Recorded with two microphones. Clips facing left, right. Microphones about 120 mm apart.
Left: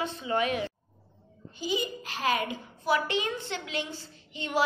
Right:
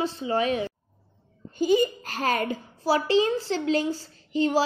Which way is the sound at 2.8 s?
30° right (ahead or behind).